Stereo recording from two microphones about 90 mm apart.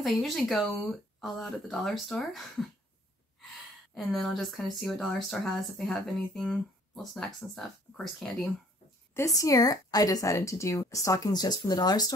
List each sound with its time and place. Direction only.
0.0 s speech: centre (ahead or behind)
3.9 s speech: centre (ahead or behind)
9.1 s a woman's voice: 35° left (ahead or behind)